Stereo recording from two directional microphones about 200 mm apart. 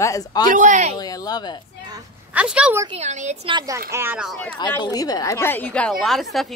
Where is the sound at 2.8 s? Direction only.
35° right (ahead or behind).